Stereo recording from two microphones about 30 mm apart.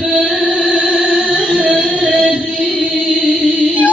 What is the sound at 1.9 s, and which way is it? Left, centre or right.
Music, right.